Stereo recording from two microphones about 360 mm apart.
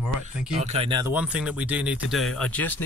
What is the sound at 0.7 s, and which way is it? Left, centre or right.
Music, centre.